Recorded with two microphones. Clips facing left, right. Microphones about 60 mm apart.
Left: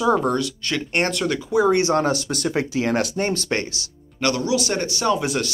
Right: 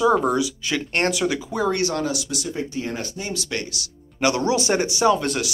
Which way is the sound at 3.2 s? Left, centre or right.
Left.